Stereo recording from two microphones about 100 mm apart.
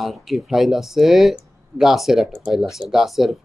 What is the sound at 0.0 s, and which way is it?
Speech, centre (ahead or behind).